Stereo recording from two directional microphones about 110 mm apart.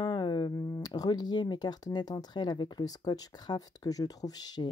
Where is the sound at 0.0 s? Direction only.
45° left (ahead or behind).